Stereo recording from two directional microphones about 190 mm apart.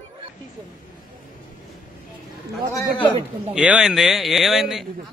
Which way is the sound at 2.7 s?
10° left (ahead or behind).